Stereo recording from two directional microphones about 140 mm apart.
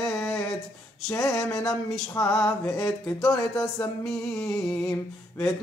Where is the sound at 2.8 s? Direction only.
20° left (ahead or behind).